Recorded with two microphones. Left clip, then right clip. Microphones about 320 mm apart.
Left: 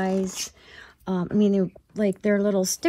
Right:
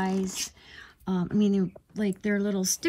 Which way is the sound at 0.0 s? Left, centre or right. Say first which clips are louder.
Left 4 dB; centre.